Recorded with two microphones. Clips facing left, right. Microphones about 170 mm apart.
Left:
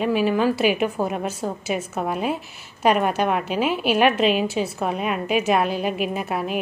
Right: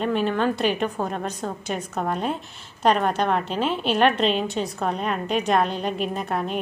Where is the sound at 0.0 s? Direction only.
5° left (ahead or behind).